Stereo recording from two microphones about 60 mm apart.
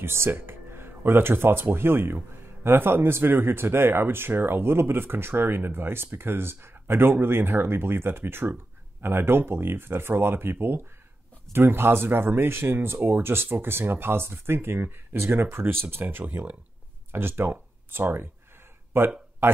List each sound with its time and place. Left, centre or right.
0.0 s speech: right